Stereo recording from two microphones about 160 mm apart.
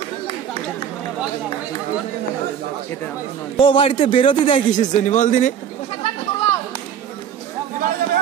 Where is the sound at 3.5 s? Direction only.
35° left (ahead or behind).